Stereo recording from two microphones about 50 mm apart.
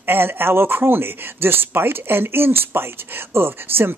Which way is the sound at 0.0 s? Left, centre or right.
Right.